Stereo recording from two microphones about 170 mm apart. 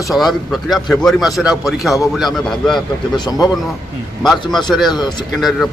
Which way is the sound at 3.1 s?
25° left (ahead or behind).